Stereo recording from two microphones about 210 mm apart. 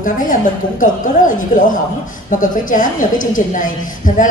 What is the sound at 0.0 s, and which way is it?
Speech, 40° left (ahead or behind).